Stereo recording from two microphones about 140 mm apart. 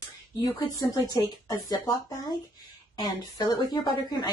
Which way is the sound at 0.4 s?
30° left (ahead or behind).